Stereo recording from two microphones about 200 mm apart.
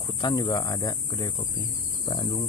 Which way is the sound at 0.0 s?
20° left (ahead or behind).